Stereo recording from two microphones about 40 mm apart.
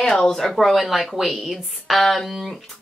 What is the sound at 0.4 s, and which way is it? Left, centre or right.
Speech, centre.